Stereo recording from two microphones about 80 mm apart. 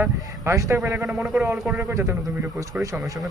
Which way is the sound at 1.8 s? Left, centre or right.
Right.